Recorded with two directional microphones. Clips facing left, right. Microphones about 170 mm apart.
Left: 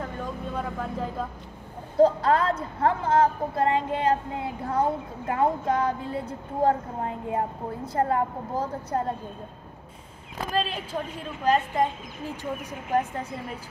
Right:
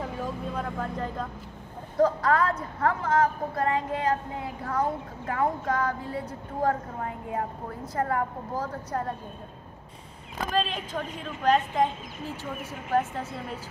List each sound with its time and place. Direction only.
0.0 s vehicle: centre (ahead or behind)
2.0 s speech: 25° left (ahead or behind)
10.5 s speech: 10° left (ahead or behind)